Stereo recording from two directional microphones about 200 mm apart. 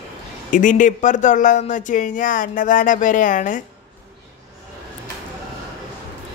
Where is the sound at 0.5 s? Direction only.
40° left (ahead or behind).